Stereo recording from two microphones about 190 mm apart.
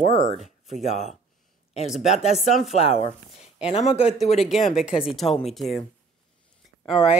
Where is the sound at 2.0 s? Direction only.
35° left (ahead or behind).